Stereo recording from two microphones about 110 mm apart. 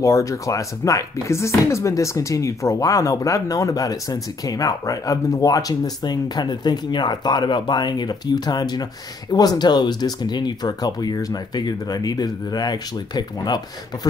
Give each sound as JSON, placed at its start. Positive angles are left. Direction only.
{"t": 0.0, "sound": "speech", "side_deg": 30}